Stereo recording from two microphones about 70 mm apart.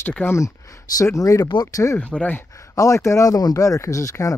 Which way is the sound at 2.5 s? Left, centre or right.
Left.